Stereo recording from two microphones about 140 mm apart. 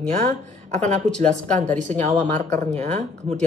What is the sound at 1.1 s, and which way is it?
Speech, 55° right (ahead or behind).